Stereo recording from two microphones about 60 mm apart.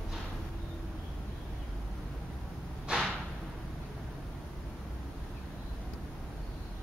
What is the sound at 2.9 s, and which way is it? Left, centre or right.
Whip, centre.